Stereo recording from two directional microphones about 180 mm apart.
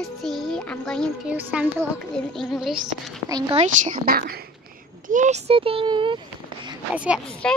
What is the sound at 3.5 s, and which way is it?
Speech, 45° right (ahead or behind).